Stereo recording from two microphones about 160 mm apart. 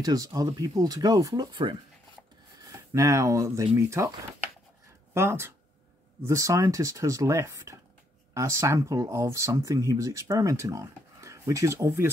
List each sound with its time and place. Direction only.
0.0 s speech: 25° right (ahead or behind)
2.9 s speech: 20° right (ahead or behind)
5.1 s speech: 15° right (ahead or behind)